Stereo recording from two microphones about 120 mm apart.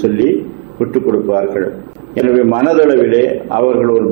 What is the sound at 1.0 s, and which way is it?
A man's voice, 20° right (ahead or behind).